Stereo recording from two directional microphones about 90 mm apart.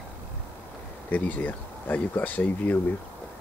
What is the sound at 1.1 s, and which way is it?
Speech, 20° left (ahead or behind).